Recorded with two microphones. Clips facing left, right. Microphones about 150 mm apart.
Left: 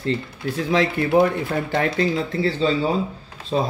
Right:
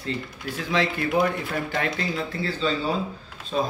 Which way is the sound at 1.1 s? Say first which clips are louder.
Left 7 dB; 25° left (ahead or behind).